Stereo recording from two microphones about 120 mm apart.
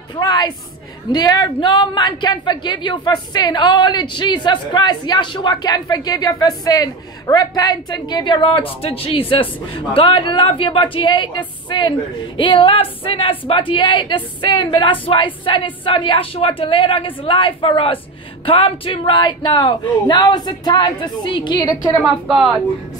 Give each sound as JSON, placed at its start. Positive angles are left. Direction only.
{"t": 0.1, "sound": "a woman's voice", "side_deg": 35}